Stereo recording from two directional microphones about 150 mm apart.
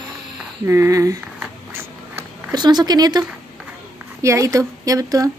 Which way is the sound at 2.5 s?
25° right (ahead or behind).